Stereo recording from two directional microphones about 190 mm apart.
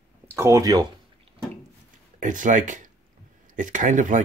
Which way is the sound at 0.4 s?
15° right (ahead or behind).